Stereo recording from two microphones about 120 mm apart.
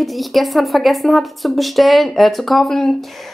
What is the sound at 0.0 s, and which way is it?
Speech, centre (ahead or behind).